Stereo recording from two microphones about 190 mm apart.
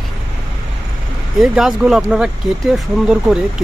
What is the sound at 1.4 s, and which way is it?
Speech, 5° right (ahead or behind).